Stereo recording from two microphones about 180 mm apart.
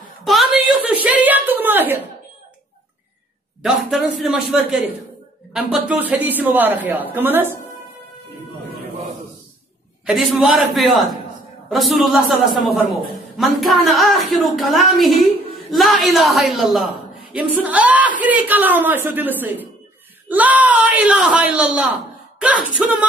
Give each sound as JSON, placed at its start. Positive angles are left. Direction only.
{"t": 0.2, "sound": "a sound", "side_deg": 0}
{"t": 3.6, "sound": "a woman's voice", "side_deg": -5}
{"t": 10.0, "sound": "a woman's voice", "side_deg": 0}